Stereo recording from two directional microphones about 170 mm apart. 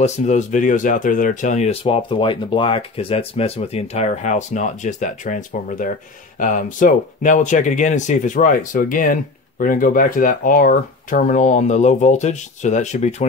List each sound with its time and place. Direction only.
0.0 s speech: 40° left (ahead or behind)